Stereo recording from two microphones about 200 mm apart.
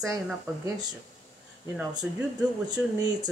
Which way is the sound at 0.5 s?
15° right (ahead or behind).